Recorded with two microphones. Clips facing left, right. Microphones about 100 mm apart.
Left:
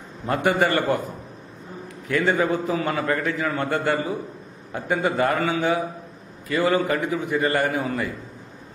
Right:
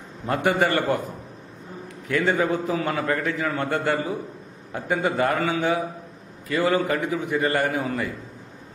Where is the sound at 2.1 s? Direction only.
20° left (ahead or behind).